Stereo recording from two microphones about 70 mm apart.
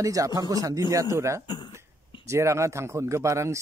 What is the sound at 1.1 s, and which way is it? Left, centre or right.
Speech, right.